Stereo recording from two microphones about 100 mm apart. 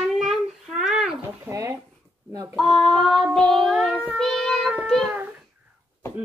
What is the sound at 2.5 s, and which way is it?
A child's voice, 5° left (ahead or behind).